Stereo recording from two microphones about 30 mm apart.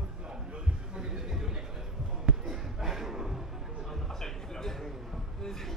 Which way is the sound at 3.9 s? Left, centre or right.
Centre.